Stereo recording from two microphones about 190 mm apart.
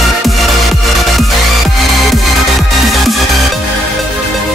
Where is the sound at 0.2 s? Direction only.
Centre (ahead or behind).